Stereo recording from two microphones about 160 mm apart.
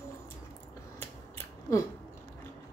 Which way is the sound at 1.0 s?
15° left (ahead or behind).